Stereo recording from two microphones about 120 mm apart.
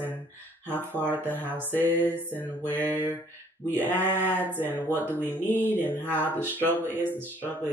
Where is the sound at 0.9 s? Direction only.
15° right (ahead or behind).